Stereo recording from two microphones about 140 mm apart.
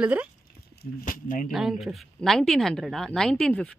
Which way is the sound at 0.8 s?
85° left.